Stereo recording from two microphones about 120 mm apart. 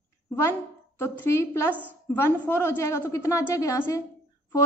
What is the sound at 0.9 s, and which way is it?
A woman's voice, 20° left (ahead or behind).